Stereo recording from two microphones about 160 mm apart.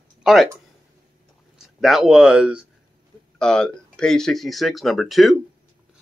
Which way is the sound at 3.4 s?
5° left (ahead or behind).